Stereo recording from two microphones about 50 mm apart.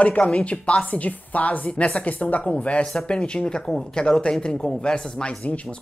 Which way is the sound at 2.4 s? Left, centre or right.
Centre.